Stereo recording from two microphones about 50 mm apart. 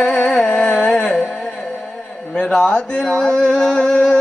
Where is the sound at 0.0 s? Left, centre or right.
Centre.